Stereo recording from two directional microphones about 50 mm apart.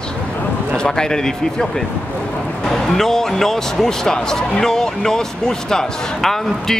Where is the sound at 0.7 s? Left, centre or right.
Centre.